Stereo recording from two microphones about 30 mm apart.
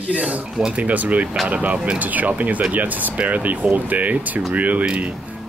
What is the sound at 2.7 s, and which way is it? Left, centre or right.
Speech, right.